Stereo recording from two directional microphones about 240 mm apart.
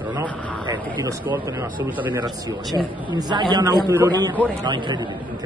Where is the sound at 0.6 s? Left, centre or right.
Centre.